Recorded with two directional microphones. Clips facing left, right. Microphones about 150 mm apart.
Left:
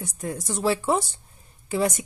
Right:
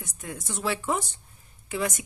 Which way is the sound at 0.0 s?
35° left (ahead or behind).